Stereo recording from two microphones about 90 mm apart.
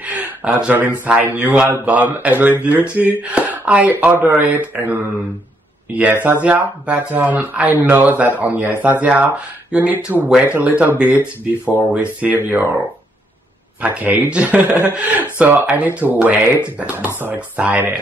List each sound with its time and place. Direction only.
0.0 s a sound: 15° right (ahead or behind)
1.0 s speech: 15° right (ahead or behind)
13.7 s speech: 20° right (ahead or behind)